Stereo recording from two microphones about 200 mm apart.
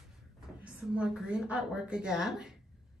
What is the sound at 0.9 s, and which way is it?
Speech, 5° right (ahead or behind).